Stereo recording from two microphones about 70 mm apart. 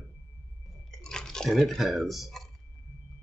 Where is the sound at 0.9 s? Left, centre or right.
Centre.